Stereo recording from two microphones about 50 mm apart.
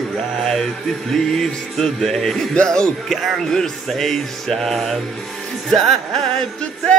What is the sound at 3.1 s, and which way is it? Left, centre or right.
Music, centre.